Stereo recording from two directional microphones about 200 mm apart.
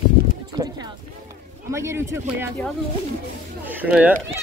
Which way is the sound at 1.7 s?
15° right (ahead or behind).